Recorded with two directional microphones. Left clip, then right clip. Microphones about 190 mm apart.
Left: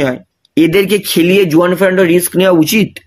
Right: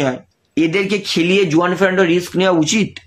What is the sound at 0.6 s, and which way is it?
Speech, 50° left (ahead or behind).